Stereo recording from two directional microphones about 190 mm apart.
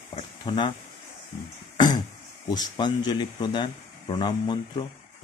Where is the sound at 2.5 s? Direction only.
20° left (ahead or behind).